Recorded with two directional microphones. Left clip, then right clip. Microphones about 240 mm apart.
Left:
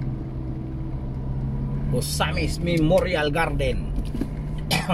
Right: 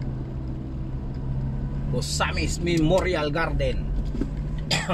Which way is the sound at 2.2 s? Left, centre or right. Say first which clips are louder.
Even; centre.